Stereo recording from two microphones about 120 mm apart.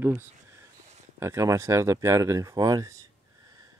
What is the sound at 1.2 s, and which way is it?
Speech, 25° right (ahead or behind).